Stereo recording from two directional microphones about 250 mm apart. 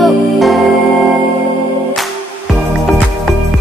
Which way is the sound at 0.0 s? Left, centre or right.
Centre.